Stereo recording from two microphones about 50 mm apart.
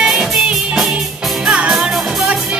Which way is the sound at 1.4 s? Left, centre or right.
Right.